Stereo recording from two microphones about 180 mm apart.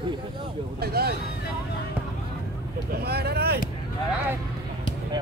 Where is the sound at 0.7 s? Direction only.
60° right (ahead or behind).